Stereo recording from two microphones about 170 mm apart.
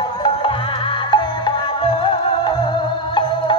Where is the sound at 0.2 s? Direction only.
30° left (ahead or behind).